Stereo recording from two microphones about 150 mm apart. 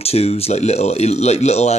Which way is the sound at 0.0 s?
40° left (ahead or behind).